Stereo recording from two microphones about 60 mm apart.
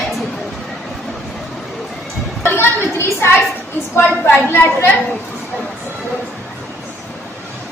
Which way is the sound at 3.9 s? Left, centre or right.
Left.